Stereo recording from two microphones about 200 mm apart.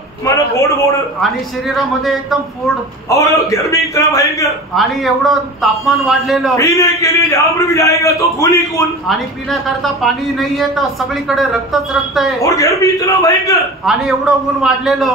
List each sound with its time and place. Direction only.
0.2 s a man's voice: 15° left (ahead or behind)
3.1 s a man's voice: 15° left (ahead or behind)
4.7 s a man's voice: centre (ahead or behind)
6.5 s a man's voice: 15° left (ahead or behind)
10.0 s a man's voice: centre (ahead or behind)
12.4 s a man's voice: 15° left (ahead or behind)
13.8 s a man's voice: centre (ahead or behind)